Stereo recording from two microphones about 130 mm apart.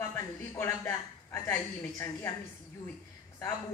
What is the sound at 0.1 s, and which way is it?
A woman's voice, 15° left (ahead or behind).